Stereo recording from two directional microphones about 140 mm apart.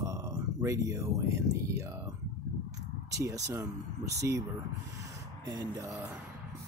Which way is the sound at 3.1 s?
25° right (ahead or behind).